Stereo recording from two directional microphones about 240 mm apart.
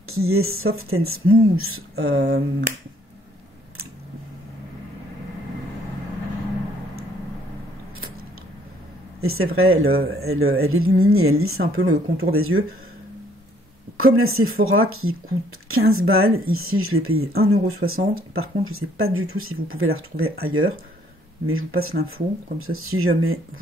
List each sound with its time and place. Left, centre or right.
0.1 s speech: right
2.0 s speech: right
9.2 s speech: right
13.9 s speech: right